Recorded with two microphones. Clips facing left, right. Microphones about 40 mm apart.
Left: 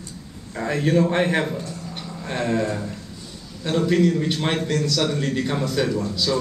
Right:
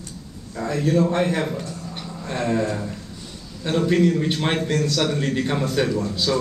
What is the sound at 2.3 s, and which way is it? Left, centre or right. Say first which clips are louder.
Speech: even; centre.